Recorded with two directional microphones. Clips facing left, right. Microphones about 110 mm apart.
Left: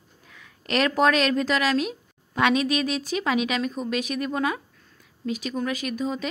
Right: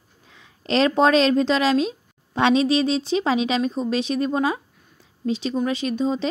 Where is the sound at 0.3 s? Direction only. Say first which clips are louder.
Right 4 dB; 25° right (ahead or behind).